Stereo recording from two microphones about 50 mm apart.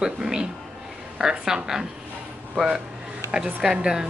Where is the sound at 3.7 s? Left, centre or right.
Centre.